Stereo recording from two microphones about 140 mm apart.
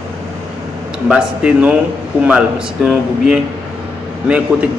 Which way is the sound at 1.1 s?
10° right (ahead or behind).